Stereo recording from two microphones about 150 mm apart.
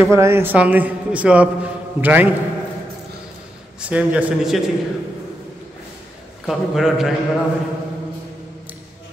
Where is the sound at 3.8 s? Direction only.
10° right (ahead or behind).